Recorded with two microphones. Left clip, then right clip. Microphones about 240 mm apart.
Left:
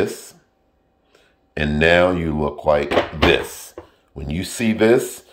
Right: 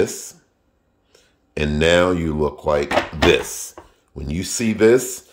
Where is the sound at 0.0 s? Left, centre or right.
Centre.